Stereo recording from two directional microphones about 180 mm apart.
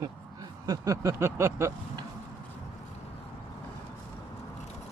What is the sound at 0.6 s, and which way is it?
Speech, 20° right (ahead or behind).